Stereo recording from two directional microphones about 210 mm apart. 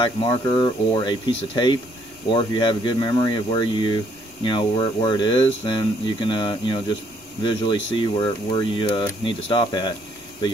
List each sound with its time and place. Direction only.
0.0 s speech: 25° left (ahead or behind)